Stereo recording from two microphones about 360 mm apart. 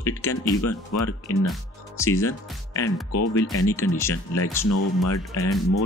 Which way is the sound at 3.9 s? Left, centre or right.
Centre.